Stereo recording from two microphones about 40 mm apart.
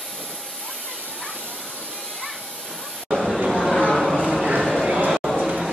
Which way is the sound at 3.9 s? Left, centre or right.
Centre.